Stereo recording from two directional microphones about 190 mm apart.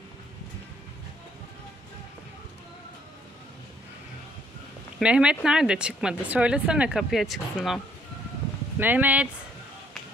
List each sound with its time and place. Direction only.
4.9 s speech: 5° right (ahead or behind)